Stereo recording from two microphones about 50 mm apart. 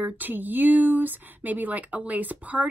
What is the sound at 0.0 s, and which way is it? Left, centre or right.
Speech, right.